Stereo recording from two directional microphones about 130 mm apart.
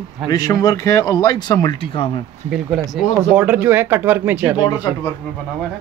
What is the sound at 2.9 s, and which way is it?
Speech, 5° right (ahead or behind).